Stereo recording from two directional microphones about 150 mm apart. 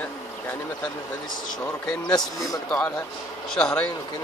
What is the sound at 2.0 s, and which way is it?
Speech, 25° left (ahead or behind).